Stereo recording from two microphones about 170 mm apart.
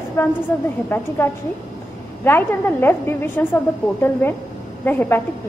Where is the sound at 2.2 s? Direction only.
15° left (ahead or behind).